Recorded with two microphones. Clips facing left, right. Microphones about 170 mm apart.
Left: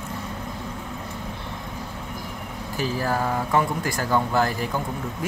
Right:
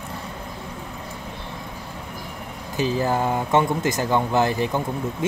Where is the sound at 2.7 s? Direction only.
20° right (ahead or behind).